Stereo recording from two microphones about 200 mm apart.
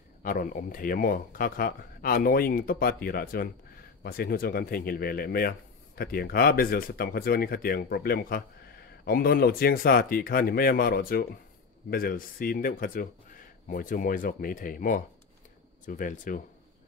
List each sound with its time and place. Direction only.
0.2 s speech: 45° left (ahead or behind)